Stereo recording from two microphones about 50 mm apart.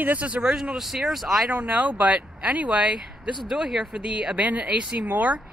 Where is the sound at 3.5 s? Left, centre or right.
Centre.